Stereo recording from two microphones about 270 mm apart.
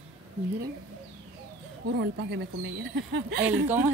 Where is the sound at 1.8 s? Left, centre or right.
Right.